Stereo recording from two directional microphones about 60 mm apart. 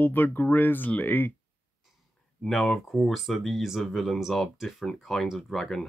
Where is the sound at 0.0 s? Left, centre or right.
Left.